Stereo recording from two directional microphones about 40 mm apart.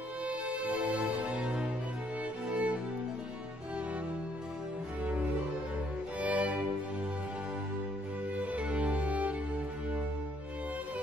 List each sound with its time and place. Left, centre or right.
0.3 s music: right
2.5 s music: right
6.2 s music: right
8.4 s music: right